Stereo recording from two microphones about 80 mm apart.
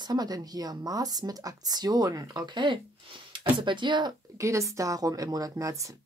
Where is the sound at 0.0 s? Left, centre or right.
Right.